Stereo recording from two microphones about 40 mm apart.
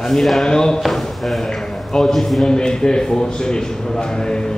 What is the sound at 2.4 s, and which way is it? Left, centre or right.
Speech, centre.